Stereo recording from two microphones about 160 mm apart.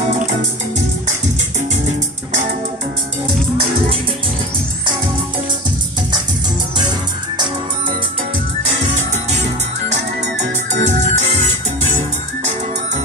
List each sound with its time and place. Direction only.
8.9 s music: 45° right (ahead or behind)